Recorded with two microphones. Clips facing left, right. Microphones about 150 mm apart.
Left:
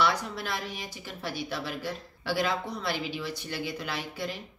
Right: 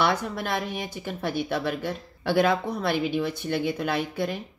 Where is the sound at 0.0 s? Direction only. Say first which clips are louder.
Right 3 dB; 55° right (ahead or behind).